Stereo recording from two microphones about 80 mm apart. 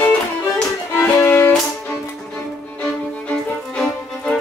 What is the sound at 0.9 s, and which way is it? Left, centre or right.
Music, left.